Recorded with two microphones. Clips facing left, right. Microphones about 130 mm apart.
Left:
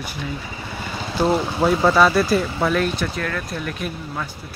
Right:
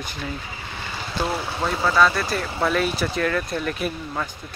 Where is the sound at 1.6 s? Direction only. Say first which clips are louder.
Left 3 dB; 15° left (ahead or behind).